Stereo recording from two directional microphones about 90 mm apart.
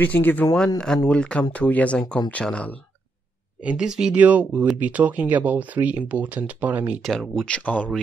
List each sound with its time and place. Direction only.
0.0 s speech: 20° left (ahead or behind)
0.7 s speech: 5° left (ahead or behind)
3.6 s speech: 10° right (ahead or behind)
7.0 s speech: 5° left (ahead or behind)